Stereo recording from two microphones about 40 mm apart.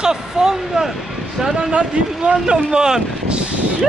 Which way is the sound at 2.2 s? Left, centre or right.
Right.